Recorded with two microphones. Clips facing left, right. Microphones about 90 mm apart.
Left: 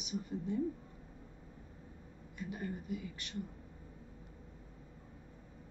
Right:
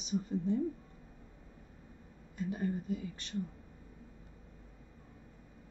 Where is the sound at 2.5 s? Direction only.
30° right (ahead or behind).